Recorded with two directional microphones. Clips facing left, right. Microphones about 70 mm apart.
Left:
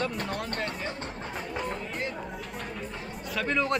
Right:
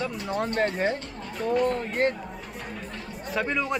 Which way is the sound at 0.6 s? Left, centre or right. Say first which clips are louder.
Right 9 dB; right.